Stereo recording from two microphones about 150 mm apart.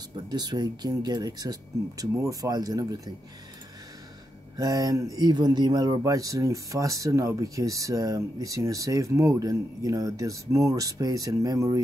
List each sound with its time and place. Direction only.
0.3 s speech: 25° right (ahead or behind)
4.6 s speech: 25° right (ahead or behind)